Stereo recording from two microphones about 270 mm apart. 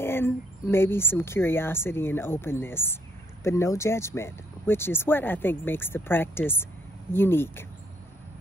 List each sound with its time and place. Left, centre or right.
0.0 s speech: centre